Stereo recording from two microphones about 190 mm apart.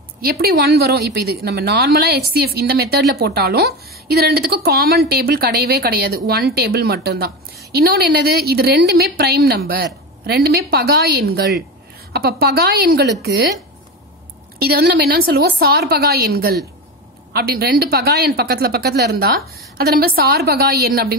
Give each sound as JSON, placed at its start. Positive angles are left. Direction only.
{"t": 0.2, "sound": "a woman's voice", "side_deg": -55}
{"t": 14.6, "sound": "a woman's voice", "side_deg": -55}